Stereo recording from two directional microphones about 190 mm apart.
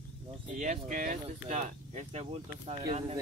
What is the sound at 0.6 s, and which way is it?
Speech, 40° right (ahead or behind).